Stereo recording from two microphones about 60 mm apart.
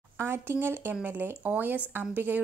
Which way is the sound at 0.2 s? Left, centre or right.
Right.